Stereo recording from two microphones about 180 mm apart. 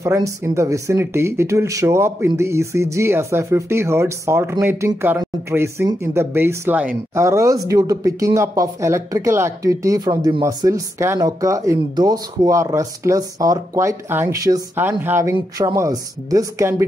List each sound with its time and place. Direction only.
0.0 s speech: 15° right (ahead or behind)